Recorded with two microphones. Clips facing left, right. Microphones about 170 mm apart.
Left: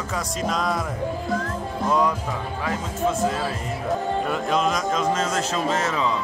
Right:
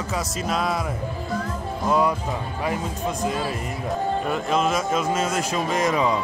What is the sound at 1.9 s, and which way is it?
Speech, 10° right (ahead or behind).